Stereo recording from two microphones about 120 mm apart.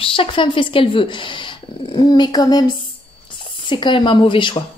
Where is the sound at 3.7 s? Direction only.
40° left (ahead or behind).